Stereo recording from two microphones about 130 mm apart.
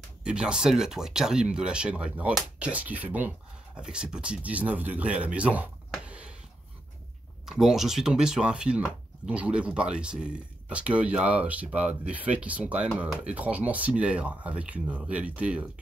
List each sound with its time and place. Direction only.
0.2 s speech: 5° right (ahead or behind)
7.4 s speech: centre (ahead or behind)